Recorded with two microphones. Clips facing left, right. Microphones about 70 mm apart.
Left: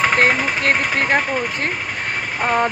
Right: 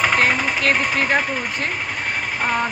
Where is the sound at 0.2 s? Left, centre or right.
Left.